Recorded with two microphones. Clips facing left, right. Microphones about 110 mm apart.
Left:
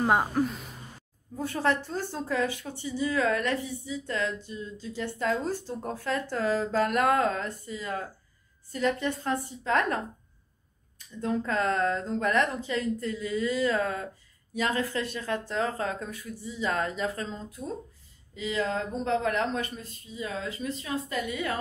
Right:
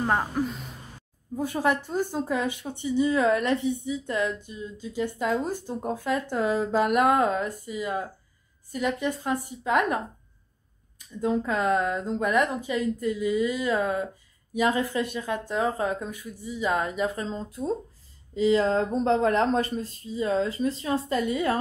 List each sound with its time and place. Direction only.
0.0 s speech: 10° left (ahead or behind)
1.3 s speech: 15° right (ahead or behind)
11.1 s speech: 15° right (ahead or behind)
17.3 s speech: 30° right (ahead or behind)